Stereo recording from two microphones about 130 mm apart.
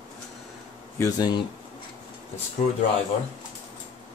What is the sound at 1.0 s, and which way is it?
Speech, 30° left (ahead or behind).